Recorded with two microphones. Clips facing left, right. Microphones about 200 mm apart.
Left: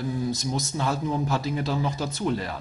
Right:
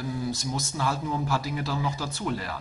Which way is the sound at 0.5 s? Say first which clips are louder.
Left 2 dB; 25° left (ahead or behind).